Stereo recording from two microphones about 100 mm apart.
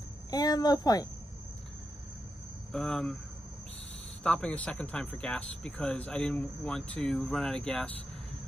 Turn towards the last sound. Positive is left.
turn(degrees=5)  # may be behind; listen again after turning